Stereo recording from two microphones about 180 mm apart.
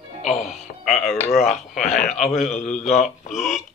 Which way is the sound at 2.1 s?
40° left (ahead or behind).